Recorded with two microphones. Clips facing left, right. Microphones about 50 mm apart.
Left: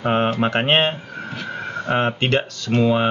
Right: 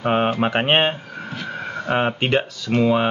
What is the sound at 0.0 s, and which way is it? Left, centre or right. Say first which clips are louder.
Speech: even; centre.